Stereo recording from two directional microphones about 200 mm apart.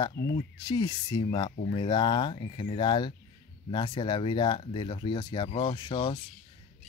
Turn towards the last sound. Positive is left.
turn(degrees=25)  # may be behind; listen again after turning